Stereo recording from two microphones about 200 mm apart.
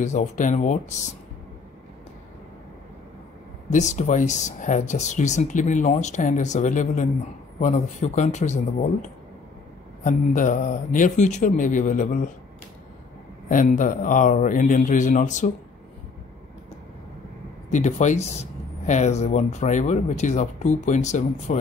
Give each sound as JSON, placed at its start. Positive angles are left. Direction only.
{"t": 0.0, "sound": "speech", "side_deg": 35}
{"t": 3.7, "sound": "speech", "side_deg": 35}
{"t": 13.5, "sound": "speech", "side_deg": 40}
{"t": 17.6, "sound": "speech", "side_deg": 35}